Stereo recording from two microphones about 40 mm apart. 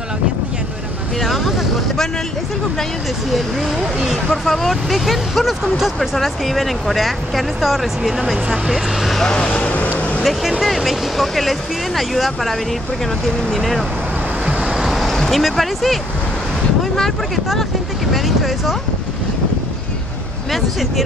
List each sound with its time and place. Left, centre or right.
1.2 s speech: centre
3.3 s speech: centre
9.2 s speech: left
9.5 s speech: left
9.9 s vehicle: left
10.6 s speech: centre
14.7 s vehicle: centre
15.1 s a sound: centre
15.4 s speech: centre
18.1 s speech: centre